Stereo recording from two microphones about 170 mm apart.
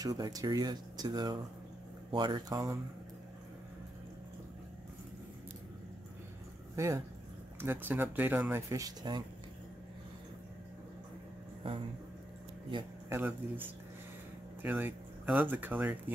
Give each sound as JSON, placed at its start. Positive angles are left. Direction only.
{"t": 0.0, "sound": "speech", "side_deg": -20}
{"t": 6.7, "sound": "a sound", "side_deg": -15}
{"t": 7.6, "sound": "speech", "side_deg": -10}
{"t": 11.6, "sound": "speech", "side_deg": -30}
{"t": 14.6, "sound": "speech", "side_deg": -10}